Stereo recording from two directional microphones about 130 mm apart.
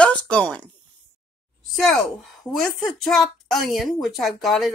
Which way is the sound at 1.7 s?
Centre (ahead or behind).